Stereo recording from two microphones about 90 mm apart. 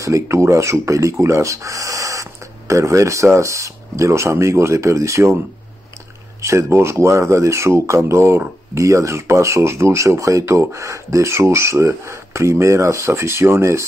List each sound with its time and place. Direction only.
0.0 s speech: 35° right (ahead or behind)
6.4 s speech: 30° right (ahead or behind)